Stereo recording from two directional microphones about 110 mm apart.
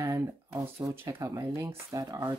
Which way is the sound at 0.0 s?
25° right (ahead or behind).